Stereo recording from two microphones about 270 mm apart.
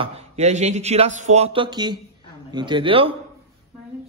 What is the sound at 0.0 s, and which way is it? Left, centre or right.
Speech, right.